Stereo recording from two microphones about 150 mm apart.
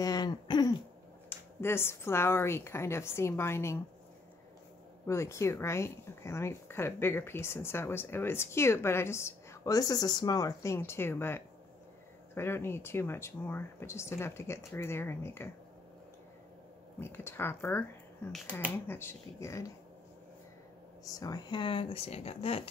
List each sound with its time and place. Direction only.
0.0 s a sound: 25° left (ahead or behind)
1.3 s speech: 15° left (ahead or behind)
5.0 s speech: 20° left (ahead or behind)
17.0 s speech: 15° left (ahead or behind)
21.0 s speech: 25° left (ahead or behind); by 22.6 s 40° left (ahead or behind)